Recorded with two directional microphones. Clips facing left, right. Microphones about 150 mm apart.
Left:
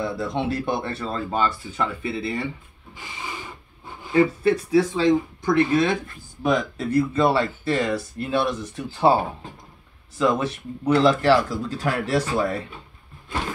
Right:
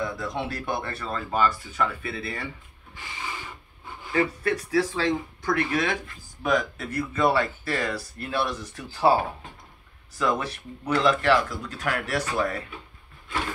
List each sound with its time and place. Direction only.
0.0 s speech: 25° left (ahead or behind)
4.1 s speech: 25° left (ahead or behind)